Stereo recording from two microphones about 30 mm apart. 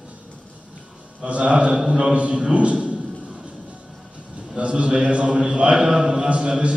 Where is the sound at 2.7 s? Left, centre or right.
Right.